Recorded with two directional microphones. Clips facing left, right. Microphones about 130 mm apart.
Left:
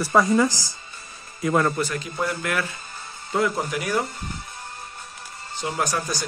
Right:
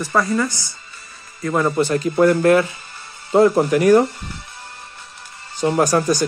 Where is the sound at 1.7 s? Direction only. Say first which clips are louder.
Right 7 dB; 30° right (ahead or behind).